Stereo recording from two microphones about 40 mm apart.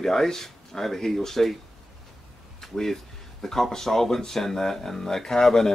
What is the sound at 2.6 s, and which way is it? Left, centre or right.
Speech, centre.